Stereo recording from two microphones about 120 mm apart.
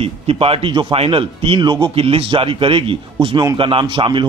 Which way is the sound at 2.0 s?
55° right (ahead or behind).